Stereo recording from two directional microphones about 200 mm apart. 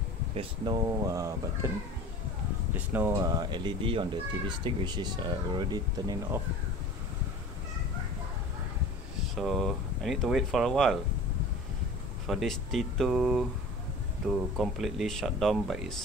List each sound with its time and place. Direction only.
0.3 s speech: 30° right (ahead or behind)
1.0 s speech: 15° right (ahead or behind)
2.9 s speech: 10° right (ahead or behind)
3.3 s speech: 20° right (ahead or behind)
9.3 s speech: centre (ahead or behind)
12.3 s speech: centre (ahead or behind)
14.6 s speech: centre (ahead or behind)